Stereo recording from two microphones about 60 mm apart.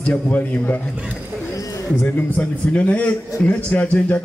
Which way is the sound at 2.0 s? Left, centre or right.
Left.